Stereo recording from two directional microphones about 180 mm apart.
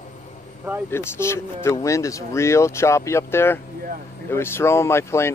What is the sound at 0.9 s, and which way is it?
Speech, 15° left (ahead or behind).